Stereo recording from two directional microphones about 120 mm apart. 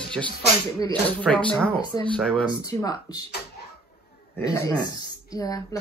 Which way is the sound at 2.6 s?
30° left (ahead or behind).